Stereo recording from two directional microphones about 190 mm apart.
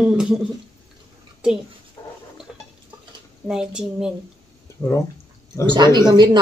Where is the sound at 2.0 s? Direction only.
20° left (ahead or behind).